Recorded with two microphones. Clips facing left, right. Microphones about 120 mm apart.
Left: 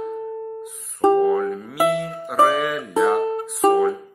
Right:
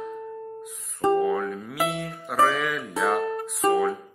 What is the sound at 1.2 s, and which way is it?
Speech, centre (ahead or behind).